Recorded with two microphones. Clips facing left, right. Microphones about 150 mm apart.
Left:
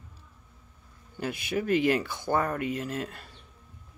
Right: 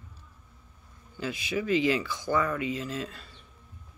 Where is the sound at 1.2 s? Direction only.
55° left (ahead or behind).